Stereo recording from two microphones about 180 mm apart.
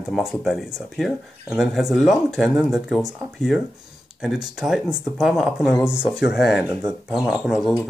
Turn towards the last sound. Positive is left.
turn(degrees=-5)  # may be behind; listen again after turning